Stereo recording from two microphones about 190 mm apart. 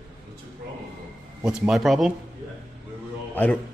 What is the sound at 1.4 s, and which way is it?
Speech, 5° right (ahead or behind).